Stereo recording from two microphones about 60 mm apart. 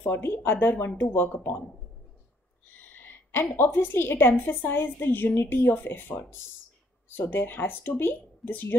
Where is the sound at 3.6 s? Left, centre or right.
Left.